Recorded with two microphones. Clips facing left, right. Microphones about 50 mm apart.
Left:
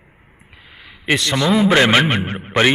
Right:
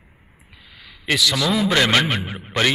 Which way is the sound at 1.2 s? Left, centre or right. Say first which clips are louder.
Left 4 dB; left.